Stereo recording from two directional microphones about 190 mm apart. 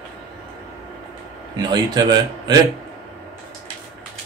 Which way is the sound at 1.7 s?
20° right (ahead or behind).